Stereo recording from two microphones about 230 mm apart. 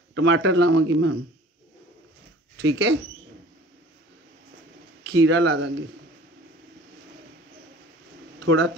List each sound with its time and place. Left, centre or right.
0.1 s a man's voice: right
2.6 s speech: right
5.0 s speech: right
8.5 s a man's voice: right